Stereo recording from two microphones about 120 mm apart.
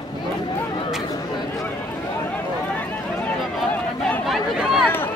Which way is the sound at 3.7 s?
15° left (ahead or behind).